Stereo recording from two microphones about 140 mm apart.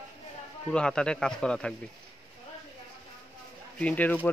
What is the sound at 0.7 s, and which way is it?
Speech, 5° left (ahead or behind).